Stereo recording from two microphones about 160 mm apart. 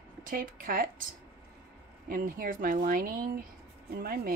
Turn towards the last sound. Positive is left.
turn(degrees=-70)  # may be behind; listen again after turning